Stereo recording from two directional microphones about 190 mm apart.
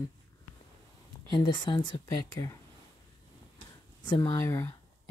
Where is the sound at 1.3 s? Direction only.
20° left (ahead or behind).